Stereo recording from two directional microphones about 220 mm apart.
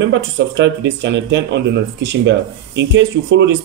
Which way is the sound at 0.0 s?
55° right (ahead or behind).